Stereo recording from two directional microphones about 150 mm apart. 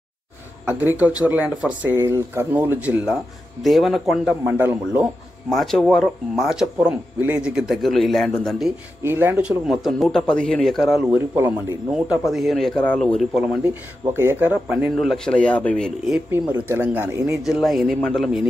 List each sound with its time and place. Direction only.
0.9 s speech: 10° right (ahead or behind)
3.6 s speech: centre (ahead or behind)
4.6 s speech: 10° right (ahead or behind)
5.5 s speech: centre (ahead or behind)
9.0 s speech: 15° right (ahead or behind); by 11.1 s centre (ahead or behind)
11.1 s speech: 15° right (ahead or behind)
11.9 s speech: 5° right (ahead or behind)
14.1 s speech: 15° right (ahead or behind); by 16.2 s 5° left (ahead or behind)
16.3 s speech: 15° right (ahead or behind)
17.4 s speech: centre (ahead or behind)